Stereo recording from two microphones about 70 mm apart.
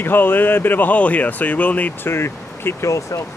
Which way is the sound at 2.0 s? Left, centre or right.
Left.